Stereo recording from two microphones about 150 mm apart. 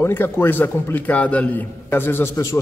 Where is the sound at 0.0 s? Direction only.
15° left (ahead or behind).